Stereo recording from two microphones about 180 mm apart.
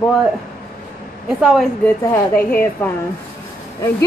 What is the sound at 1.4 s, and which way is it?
Speech, centre (ahead or behind).